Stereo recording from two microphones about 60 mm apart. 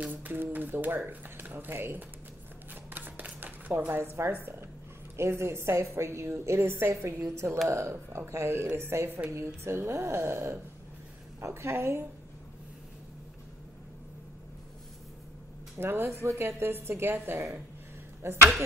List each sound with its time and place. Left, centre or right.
0.0 s speech: right
2.7 s shuffling cards: right
3.7 s a woman's voice: right
15.8 s a woman's voice: right